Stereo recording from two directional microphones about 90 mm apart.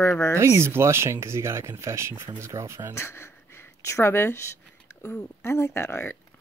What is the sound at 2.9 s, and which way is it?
A woman's voice, 30° left (ahead or behind).